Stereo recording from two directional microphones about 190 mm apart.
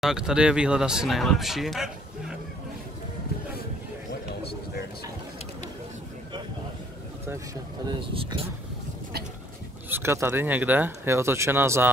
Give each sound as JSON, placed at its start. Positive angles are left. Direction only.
{"t": 0.0, "sound": "speech", "side_deg": -5}
{"t": 7.8, "sound": "speech", "side_deg": -25}
{"t": 9.8, "sound": "speech", "side_deg": -10}